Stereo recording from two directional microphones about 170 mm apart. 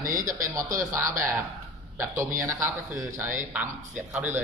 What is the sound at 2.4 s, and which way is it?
A man's voice, 15° right (ahead or behind).